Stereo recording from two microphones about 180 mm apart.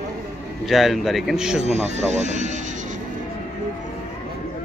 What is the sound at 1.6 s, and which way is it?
Speech, 40° right (ahead or behind).